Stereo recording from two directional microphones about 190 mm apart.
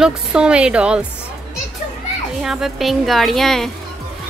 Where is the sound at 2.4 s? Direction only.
Centre (ahead or behind).